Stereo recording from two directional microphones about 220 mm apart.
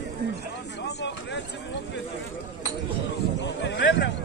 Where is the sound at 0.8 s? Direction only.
50° left (ahead or behind).